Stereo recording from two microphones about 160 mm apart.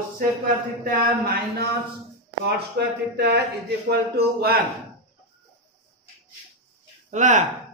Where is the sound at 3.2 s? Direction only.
90° right.